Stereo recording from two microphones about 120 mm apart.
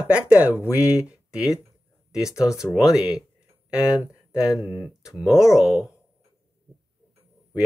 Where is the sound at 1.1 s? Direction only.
5° right (ahead or behind).